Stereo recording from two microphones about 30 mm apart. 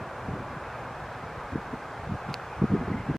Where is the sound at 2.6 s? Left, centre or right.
Centre.